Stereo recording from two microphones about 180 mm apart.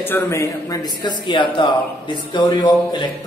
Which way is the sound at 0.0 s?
15° left (ahead or behind).